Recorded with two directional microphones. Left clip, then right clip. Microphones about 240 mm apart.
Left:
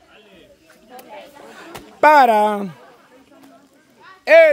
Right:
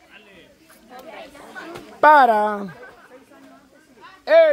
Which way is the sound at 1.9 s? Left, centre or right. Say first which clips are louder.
Left 2 dB; centre.